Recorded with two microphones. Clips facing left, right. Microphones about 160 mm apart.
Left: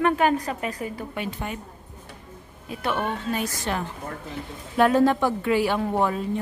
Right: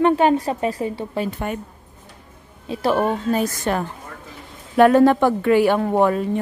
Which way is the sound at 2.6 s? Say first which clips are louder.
Right 7 dB; 30° right (ahead or behind).